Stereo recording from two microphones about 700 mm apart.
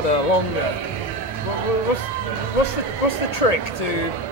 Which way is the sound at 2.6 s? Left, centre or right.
Left.